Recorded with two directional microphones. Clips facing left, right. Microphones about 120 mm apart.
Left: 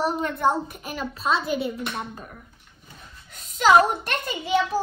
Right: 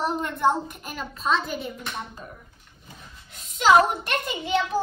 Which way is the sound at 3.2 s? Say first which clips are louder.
Left 1 dB; 45° left (ahead or behind).